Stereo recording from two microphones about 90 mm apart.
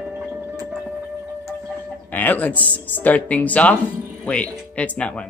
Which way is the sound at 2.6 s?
20° left (ahead or behind).